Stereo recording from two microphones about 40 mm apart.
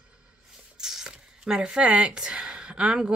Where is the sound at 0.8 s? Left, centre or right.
Centre.